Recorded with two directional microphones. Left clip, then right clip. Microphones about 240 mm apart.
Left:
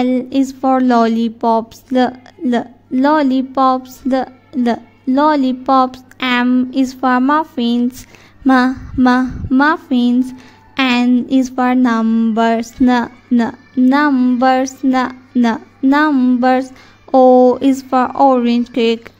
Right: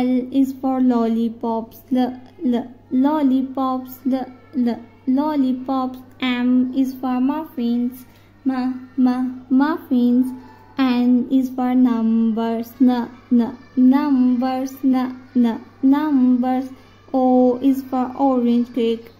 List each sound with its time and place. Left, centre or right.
0.0 s a woman's voice: left